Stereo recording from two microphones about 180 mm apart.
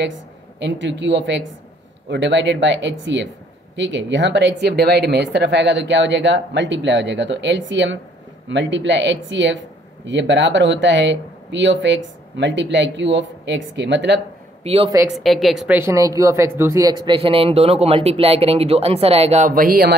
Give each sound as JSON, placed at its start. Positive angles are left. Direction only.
{"t": 0.0, "sound": "speech", "side_deg": -80}
{"t": 14.6, "sound": "a woman's voice", "side_deg": -35}
{"t": 15.1, "sound": "a woman's voice", "side_deg": 0}
{"t": 15.8, "sound": "speech", "side_deg": -15}